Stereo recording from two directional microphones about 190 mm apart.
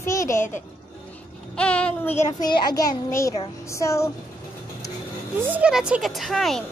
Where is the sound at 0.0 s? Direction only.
15° left (ahead or behind).